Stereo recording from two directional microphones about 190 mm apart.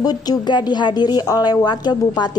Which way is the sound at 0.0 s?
20° left (ahead or behind).